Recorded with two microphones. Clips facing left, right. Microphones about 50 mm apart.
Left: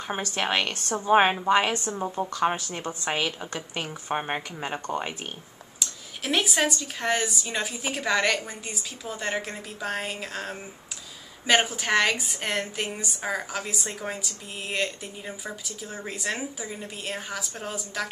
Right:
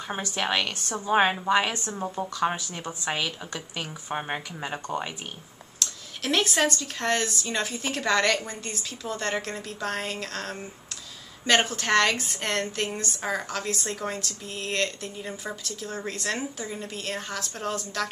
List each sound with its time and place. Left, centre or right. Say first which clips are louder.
0.4 s a woman's voice: even; left
0.9 s a woman's voice: left 3 dB; centre
3.1 s a woman's voice: left 1 dB; centre